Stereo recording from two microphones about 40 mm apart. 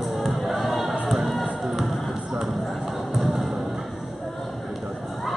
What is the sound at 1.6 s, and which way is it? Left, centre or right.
Music, centre.